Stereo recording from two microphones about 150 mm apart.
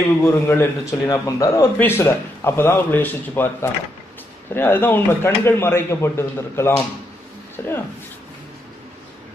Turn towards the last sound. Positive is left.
turn(degrees=15)  # may be behind; listen again after turning